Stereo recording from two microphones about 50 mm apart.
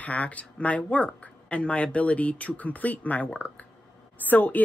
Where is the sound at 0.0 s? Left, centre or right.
Left.